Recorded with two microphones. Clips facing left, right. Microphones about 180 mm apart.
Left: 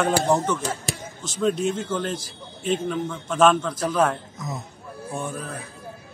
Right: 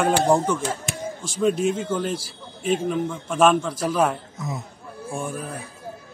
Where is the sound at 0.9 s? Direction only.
35° left (ahead or behind).